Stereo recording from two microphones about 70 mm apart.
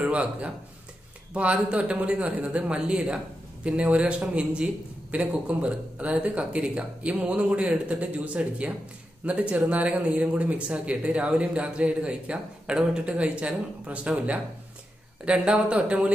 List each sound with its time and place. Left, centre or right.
0.0 s speech: centre